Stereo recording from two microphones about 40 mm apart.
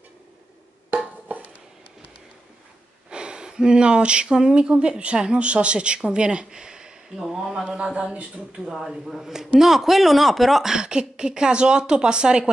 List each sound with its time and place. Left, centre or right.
1.3 s a sound: right
3.1 s speech: right
7.6 s speech: right
8.7 s speech: centre
10.6 s speech: centre